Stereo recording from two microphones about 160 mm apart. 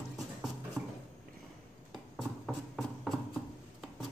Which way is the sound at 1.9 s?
Centre (ahead or behind).